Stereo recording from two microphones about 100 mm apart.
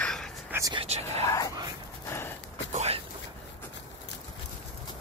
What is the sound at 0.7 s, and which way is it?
Whispering, 90° right.